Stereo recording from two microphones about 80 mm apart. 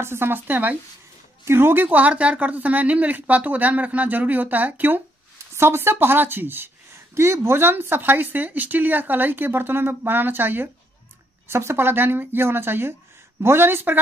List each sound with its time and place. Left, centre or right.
0.0 s speech: right